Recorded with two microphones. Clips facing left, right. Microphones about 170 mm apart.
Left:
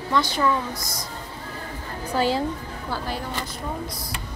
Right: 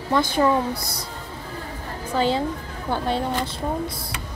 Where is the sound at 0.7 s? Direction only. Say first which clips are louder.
Right 2 dB; 65° right (ahead or behind).